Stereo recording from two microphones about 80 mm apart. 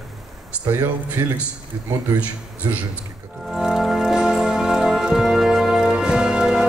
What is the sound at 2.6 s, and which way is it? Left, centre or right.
Speech, right.